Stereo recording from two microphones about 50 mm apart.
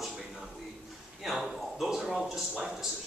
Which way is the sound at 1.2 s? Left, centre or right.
Centre.